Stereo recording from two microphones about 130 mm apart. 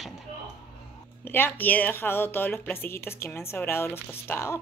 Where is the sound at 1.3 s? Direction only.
15° left (ahead or behind).